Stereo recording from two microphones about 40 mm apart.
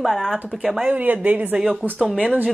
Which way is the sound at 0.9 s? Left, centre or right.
Right.